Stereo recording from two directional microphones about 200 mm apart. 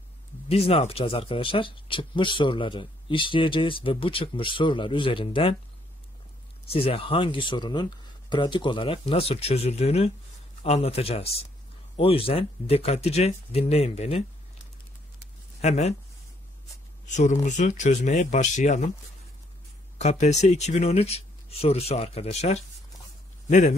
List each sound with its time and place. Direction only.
0.5 s speech: 30° left (ahead or behind)
6.7 s speech: 30° left (ahead or behind)
15.6 s speech: 35° left (ahead or behind)
17.1 s speech: 35° left (ahead or behind)
20.0 s speech: 35° left (ahead or behind)